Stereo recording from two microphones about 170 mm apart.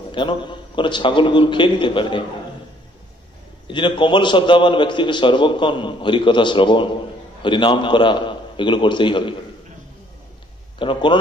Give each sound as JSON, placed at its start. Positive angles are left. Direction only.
{"t": 0.1, "sound": "a man's voice", "side_deg": 30}
{"t": 3.6, "sound": "a man's voice", "side_deg": 30}
{"t": 10.8, "sound": "a man's voice", "side_deg": 30}